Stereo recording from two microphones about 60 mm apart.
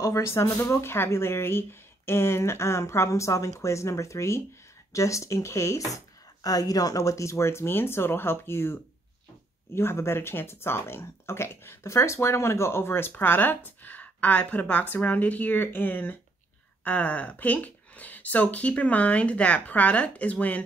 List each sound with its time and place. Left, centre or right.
0.0 s speech: left
9.8 s speech: left